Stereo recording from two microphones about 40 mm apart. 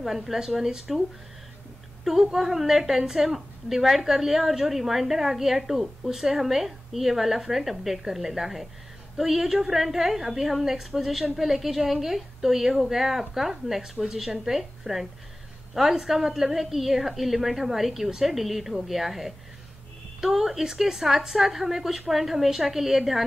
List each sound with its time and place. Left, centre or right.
0.0 s a woman's voice: centre
2.0 s a woman's voice: centre